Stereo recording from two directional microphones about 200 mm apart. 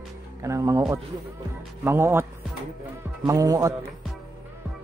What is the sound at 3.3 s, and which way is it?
Speech, 15° right (ahead or behind).